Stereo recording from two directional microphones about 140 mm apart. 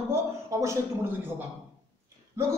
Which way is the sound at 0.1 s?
20° right (ahead or behind).